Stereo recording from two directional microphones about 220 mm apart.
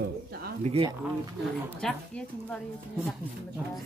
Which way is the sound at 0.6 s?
25° right (ahead or behind).